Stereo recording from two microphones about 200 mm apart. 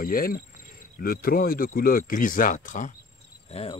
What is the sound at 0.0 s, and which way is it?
Speech, 45° left (ahead or behind).